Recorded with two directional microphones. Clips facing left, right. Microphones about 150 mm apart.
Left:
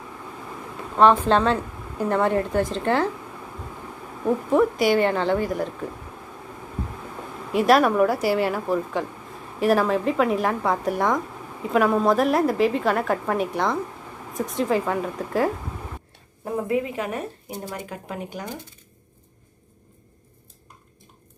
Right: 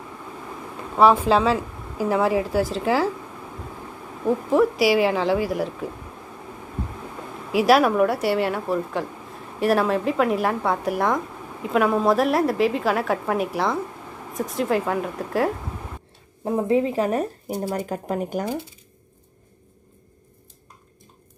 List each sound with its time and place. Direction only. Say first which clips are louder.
0.9 s speech: even; 5° right (ahead or behind)
4.3 s speech: right 1 dB; centre (ahead or behind)
7.5 s speech: right 1 dB; centre (ahead or behind)
16.4 s speech: right 4 dB; 25° right (ahead or behind); by 18.6 s 45° right (ahead or behind)